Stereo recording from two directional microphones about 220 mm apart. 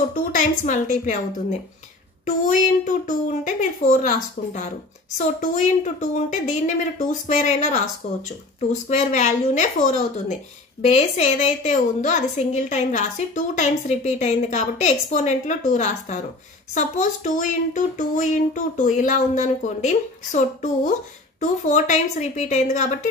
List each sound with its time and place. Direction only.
0.1 s speech: 35° left (ahead or behind)
5.1 s speech: 35° left (ahead or behind)